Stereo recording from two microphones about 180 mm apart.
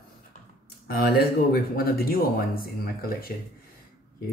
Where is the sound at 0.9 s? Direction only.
60° left (ahead or behind).